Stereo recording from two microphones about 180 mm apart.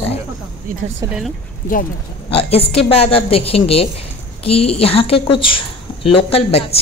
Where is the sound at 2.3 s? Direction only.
35° left (ahead or behind).